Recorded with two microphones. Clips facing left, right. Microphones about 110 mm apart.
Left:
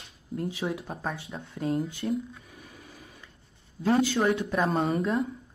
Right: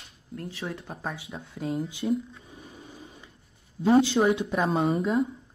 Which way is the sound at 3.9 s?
25° right (ahead or behind).